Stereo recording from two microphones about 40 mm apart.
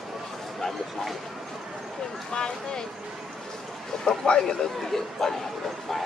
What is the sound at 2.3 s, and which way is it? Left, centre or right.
Speech, centre.